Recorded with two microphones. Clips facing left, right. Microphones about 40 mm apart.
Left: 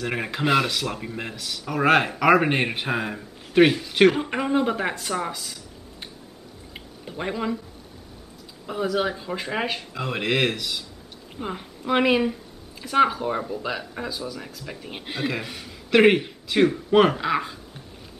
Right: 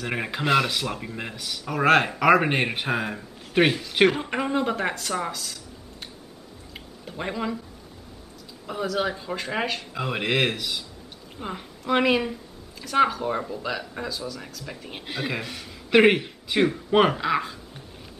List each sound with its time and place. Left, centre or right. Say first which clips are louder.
0.0 s speech: left 2 dB; centre
7.1 s speech: left 2 dB; centre
8.6 s a woman's voice: left 2 dB; centre